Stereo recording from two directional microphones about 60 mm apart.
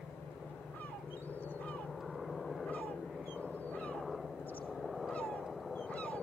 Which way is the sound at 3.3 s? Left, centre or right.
Left.